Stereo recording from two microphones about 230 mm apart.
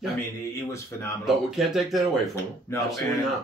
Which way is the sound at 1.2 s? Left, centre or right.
Centre.